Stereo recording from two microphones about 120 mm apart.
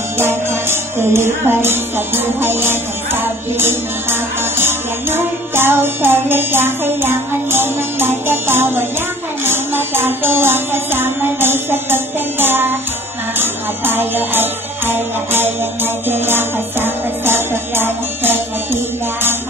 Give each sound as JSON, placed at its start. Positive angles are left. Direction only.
{"t": 0.2, "sound": "music", "side_deg": -20}